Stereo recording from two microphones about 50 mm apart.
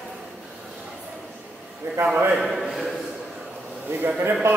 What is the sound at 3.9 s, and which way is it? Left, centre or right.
Speech, right.